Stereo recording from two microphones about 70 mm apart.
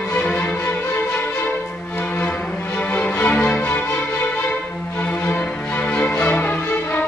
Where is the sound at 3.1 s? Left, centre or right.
Left.